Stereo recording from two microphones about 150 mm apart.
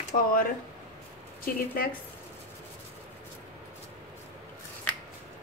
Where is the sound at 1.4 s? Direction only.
80° left.